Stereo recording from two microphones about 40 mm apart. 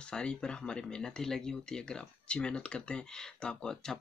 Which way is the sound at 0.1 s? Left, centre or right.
Left.